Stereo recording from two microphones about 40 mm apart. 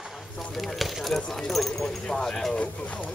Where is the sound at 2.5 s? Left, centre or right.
Left.